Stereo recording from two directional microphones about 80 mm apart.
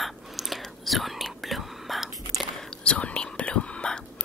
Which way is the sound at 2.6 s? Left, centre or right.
Centre.